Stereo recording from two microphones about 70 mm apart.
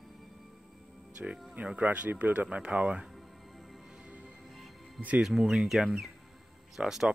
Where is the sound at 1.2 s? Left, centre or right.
Centre.